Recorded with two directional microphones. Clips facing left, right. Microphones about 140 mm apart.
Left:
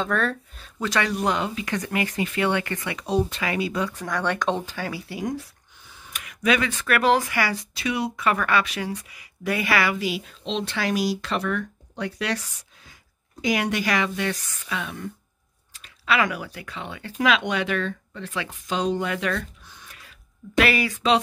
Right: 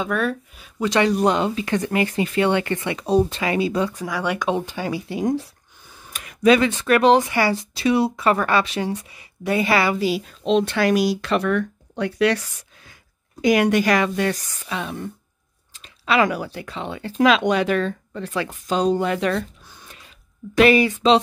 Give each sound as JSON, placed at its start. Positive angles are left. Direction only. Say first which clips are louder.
{"t": 0.0, "sound": "speech", "louder": "right 2 dB", "side_deg": -10}
{"t": 0.8, "sound": "speech", "louder": "right 6 dB", "side_deg": -25}
{"t": 3.9, "sound": "speech", "louder": "right 2 dB", "side_deg": -10}
{"t": 5.9, "sound": "speech", "louder": "right 3 dB", "side_deg": -35}
{"t": 13.4, "sound": "speech", "louder": "right 7 dB", "side_deg": -55}
{"t": 14.7, "sound": "speech", "louder": "right 3 dB", "side_deg": -30}
{"t": 19.9, "sound": "a sound", "louder": "right 2 dB", "side_deg": -25}